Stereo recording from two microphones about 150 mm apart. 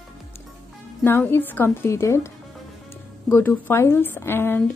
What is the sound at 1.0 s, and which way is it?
A woman's voice, 15° left (ahead or behind).